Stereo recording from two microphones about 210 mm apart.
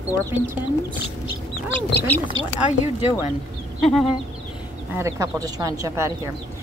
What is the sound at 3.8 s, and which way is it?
Chicken, centre (ahead or behind).